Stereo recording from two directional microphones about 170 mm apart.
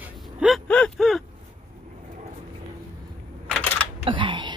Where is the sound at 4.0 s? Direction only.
30° right (ahead or behind).